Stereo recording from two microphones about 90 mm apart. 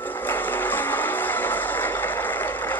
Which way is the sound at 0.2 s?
20° left (ahead or behind).